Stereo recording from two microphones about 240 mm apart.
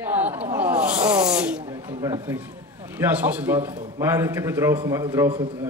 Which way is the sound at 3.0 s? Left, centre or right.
Centre.